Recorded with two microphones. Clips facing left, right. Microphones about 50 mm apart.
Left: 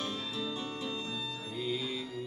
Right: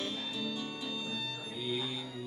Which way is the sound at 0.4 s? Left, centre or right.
Left.